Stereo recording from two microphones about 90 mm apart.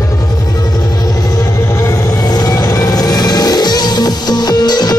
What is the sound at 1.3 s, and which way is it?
Music, 30° left (ahead or behind).